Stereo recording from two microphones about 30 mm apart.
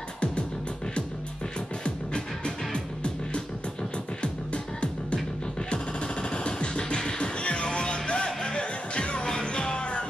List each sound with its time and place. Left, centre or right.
2.1 s music: left
5.7 s music: left